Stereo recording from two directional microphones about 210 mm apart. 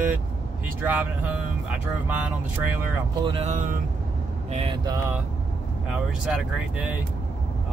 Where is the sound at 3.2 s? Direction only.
30° right (ahead or behind).